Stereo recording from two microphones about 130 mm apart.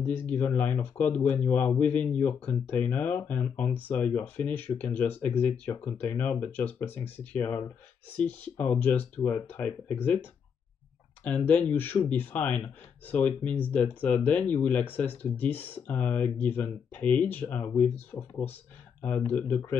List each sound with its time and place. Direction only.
0.0 s speech: 15° left (ahead or behind)
11.2 s speech: 10° left (ahead or behind)